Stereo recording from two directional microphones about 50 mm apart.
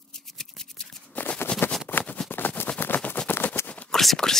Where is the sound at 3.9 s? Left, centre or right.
Centre.